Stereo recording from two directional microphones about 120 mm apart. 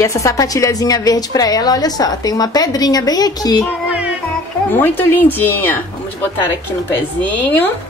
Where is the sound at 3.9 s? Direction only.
10° right (ahead or behind).